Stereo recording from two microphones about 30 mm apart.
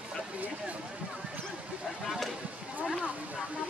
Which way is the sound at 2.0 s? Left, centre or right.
Centre.